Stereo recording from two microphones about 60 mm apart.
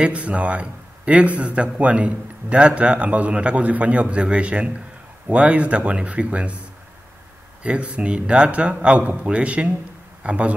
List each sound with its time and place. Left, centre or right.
0.0 s a man's voice: right
7.6 s a man's voice: right